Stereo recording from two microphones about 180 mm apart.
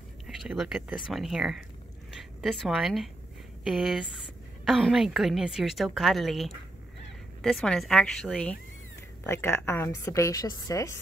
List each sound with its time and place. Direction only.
0.3 s a woman's voice: centre (ahead or behind); by 11.0 s 20° left (ahead or behind)